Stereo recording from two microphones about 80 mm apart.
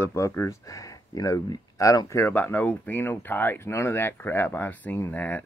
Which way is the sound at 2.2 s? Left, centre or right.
Left.